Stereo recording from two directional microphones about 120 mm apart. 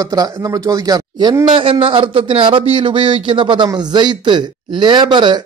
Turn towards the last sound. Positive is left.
turn(degrees=-40)  # may be behind; listen again after turning